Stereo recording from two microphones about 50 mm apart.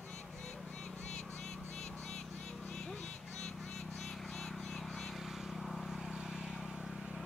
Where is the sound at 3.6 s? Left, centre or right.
Centre.